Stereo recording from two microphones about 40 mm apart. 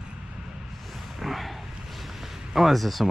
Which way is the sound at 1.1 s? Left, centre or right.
Centre.